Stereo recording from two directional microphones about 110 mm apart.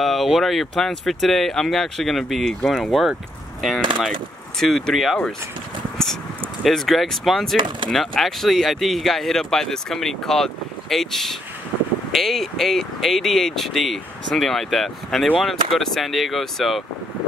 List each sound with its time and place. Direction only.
0.0 s speech: centre (ahead or behind)
4.6 s speech: 5° left (ahead or behind)
6.6 s speech: centre (ahead or behind)
7.5 s speech: 45° right (ahead or behind)
7.9 s speech: 5° left (ahead or behind)